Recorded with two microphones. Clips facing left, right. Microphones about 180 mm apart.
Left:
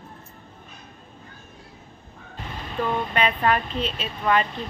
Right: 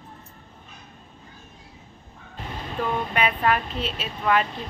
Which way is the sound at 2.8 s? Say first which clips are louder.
Left 1 dB; 10° right (ahead or behind).